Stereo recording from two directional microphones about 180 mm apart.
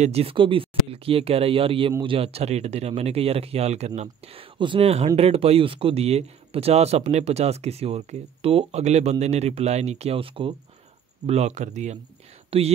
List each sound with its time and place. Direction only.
0.0 s speech: 35° right (ahead or behind)